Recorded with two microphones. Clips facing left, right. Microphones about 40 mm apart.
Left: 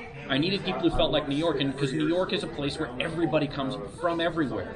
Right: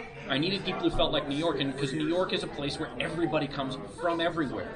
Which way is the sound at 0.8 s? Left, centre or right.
Centre.